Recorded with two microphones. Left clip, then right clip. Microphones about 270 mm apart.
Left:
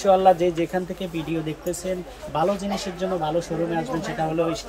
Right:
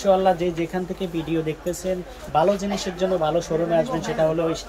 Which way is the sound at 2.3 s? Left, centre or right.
Centre.